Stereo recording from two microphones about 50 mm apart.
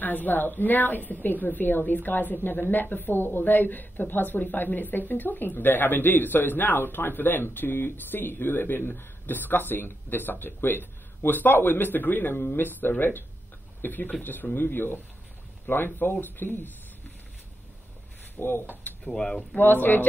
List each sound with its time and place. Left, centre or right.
0.0 s a woman's voice: left
18.4 s a woman's voice: left
19.0 s speech: centre
19.5 s a woman's voice: left